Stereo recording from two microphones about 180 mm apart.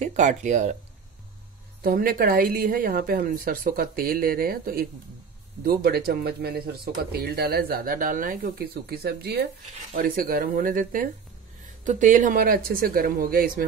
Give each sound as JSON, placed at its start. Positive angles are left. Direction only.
{"t": 0.0, "sound": "speech", "side_deg": -40}
{"t": 1.8, "sound": "a woman's voice", "side_deg": -50}
{"t": 8.7, "sound": "a woman's voice", "side_deg": -60}
{"t": 9.9, "sound": "speech", "side_deg": -50}